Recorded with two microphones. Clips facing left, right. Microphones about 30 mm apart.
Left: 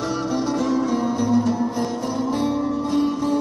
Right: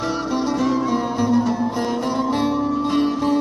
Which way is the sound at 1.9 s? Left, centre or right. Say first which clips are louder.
Right 3 dB; right.